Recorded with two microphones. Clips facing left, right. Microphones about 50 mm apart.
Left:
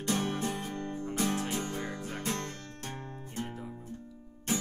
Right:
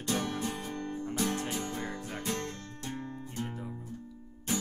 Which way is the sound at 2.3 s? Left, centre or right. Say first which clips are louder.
Right 1 dB; left.